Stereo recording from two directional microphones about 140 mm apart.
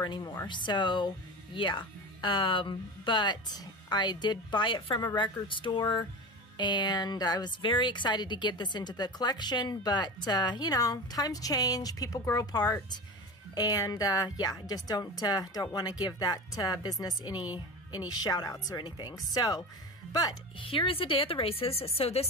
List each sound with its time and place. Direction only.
0.0 s a woman's voice: 30° left (ahead or behind)
20.6 s speech: 40° left (ahead or behind)